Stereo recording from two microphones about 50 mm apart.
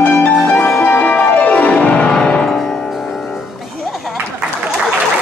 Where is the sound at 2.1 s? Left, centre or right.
Centre.